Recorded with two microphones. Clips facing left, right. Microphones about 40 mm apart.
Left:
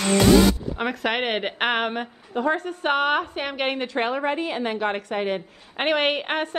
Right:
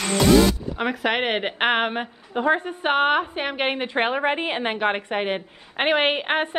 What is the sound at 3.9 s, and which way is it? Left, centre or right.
A woman's voice, right.